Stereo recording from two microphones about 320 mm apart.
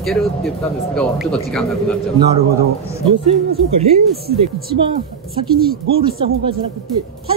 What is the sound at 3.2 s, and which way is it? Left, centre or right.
Speech, centre.